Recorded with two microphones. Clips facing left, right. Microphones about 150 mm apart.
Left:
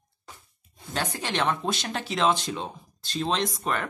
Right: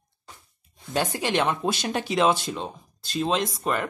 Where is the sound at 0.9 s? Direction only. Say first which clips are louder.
Right 5 dB; 15° right (ahead or behind).